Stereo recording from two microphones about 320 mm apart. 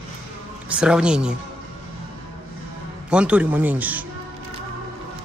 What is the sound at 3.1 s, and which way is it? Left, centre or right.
Speech, centre.